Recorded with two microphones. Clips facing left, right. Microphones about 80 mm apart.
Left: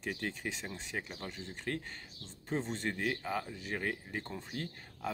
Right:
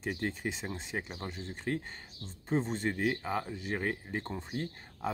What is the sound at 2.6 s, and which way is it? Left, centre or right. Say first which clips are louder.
Speech: right 4 dB; centre.